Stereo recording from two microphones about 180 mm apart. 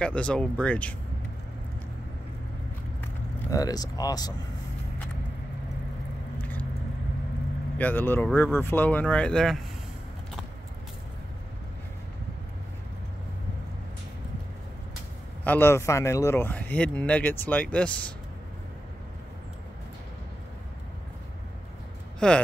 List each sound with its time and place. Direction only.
0.0 s speech: 5° left (ahead or behind)
3.4 s speech: 20° left (ahead or behind)
7.7 s speech: 10° left (ahead or behind)
15.4 s speech: 10° left (ahead or behind)
22.2 s speech: 5° left (ahead or behind)